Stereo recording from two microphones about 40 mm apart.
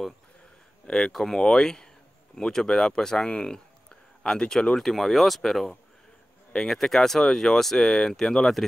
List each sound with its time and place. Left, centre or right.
0.8 s speech: centre
4.7 s speech: centre